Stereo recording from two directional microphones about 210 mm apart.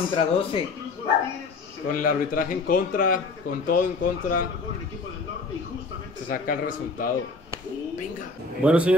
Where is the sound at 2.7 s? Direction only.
40° left (ahead or behind).